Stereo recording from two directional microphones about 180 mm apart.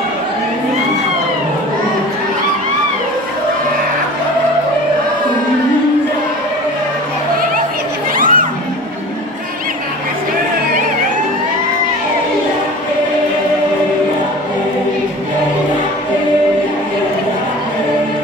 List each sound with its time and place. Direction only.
8.2 s crowd: 50° right (ahead or behind)